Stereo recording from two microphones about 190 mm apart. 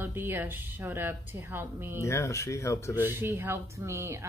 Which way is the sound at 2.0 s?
15° left (ahead or behind).